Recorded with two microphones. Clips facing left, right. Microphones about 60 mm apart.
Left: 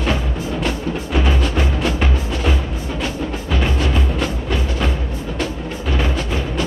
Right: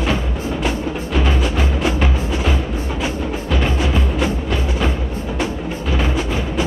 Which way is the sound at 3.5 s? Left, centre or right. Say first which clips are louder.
Right 1 dB; centre.